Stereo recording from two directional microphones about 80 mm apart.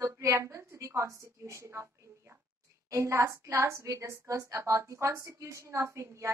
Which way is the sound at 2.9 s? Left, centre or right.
Right.